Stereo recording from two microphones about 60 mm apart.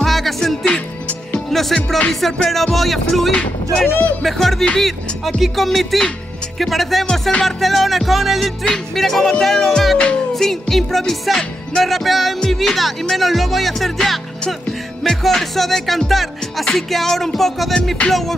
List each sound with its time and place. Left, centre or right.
0.0 s music: centre
0.7 s music: left
1.5 s music: centre
4.7 s speech: centre
5.4 s music: centre
10.3 s music: centre
18.0 s music: centre